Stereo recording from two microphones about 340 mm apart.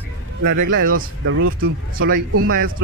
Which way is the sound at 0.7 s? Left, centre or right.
Right.